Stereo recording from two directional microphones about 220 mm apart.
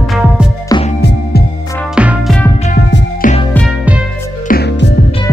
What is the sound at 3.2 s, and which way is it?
Music, 35° left (ahead or behind).